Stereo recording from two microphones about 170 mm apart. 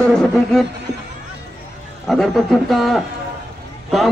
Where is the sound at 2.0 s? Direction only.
Centre (ahead or behind).